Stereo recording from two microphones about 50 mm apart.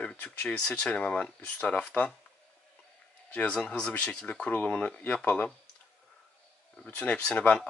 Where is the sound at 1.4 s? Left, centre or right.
Left.